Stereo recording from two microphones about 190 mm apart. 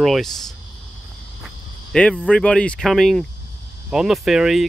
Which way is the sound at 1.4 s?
5° left (ahead or behind).